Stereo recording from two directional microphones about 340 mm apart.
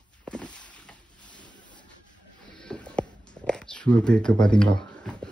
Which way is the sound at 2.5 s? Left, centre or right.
Centre.